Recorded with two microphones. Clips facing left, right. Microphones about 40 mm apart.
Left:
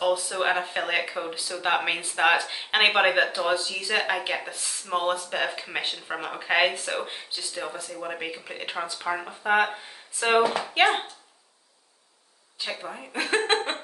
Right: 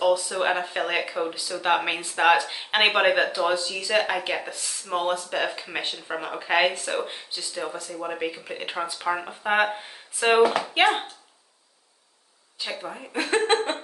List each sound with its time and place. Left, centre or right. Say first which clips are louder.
0.3 s speech: right 1 dB; centre
4.5 s speech: right 1 dB; centre
5.3 s speech: right 1 dB; centre
10.8 s speech: even; centre
12.5 s speech: right 1 dB; centre
13.4 s a sound: right 4 dB; centre